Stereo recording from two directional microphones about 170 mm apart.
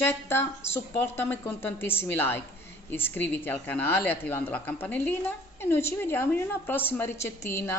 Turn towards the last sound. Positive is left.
turn(degrees=15)  # may be behind; listen again after turning